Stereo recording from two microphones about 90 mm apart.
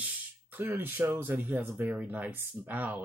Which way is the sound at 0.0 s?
20° right (ahead or behind).